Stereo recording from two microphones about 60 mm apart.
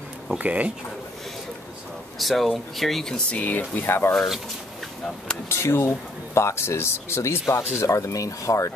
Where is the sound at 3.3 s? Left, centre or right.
Left.